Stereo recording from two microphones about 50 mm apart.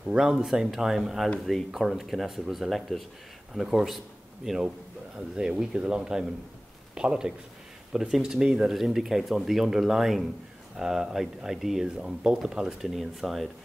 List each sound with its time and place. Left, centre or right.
0.1 s speech: centre
0.5 s speech: centre
5.1 s speech: centre
12.0 s speech: right; by 13.5 s centre